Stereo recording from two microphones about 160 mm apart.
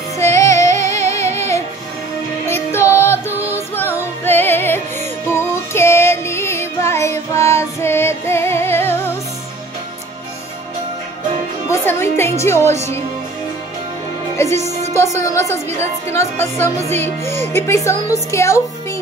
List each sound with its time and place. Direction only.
0.2 s female singing: 20° left (ahead or behind)
0.8 s music: 20° left (ahead or behind)
3.3 s music: 10° right (ahead or behind)
3.5 s music: 15° left (ahead or behind)
11.7 s a woman's voice: 15° left (ahead or behind)
14.4 s music: 45° right (ahead or behind)
16.1 s speech: 15° left (ahead or behind)